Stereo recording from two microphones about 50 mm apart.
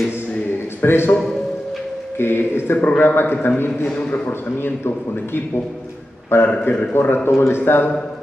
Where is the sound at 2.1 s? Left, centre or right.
Left.